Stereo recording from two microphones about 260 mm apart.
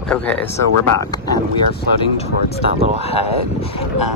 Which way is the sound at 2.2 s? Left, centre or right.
Left.